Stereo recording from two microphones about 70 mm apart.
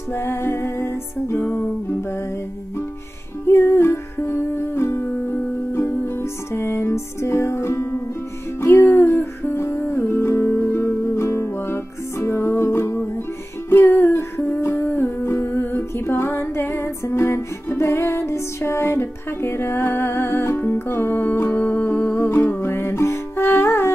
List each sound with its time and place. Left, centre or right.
0.1 s music: left
3.4 s music: left
5.1 s music: left
6.5 s music: left
13.9 s humming: left
22.5 s music: left